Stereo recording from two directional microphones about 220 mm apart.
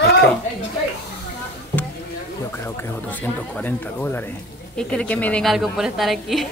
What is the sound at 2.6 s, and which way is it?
A woman's voice, 10° left (ahead or behind).